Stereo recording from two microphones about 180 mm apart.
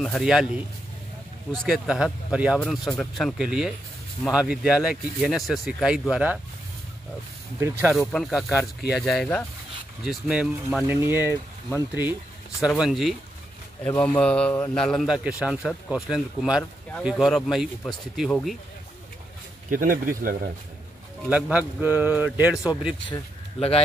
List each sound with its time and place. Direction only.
0.0 s speech: centre (ahead or behind)
1.5 s speech: centre (ahead or behind)
8.1 s speech: centre (ahead or behind)
11.0 s a man's voice: 10° right (ahead or behind)
19.7 s speech: 50° right (ahead or behind)
21.3 s speech: 5° right (ahead or behind)
23.0 s speech: 30° left (ahead or behind)